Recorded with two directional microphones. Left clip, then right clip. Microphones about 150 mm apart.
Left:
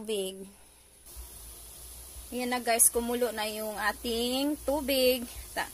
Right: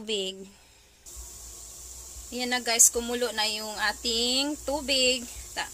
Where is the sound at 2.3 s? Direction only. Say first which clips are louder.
Right 1 dB; 10° left (ahead or behind).